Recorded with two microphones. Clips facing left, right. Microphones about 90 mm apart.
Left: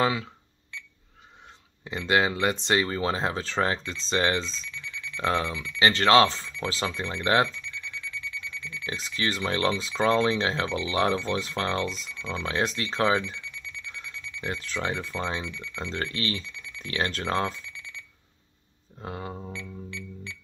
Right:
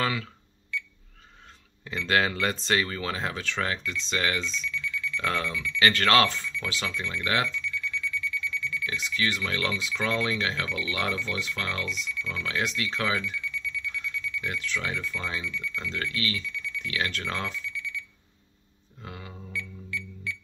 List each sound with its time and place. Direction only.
0.0 s cash register: 20° left (ahead or behind)
1.9 s speech: 20° left (ahead or behind)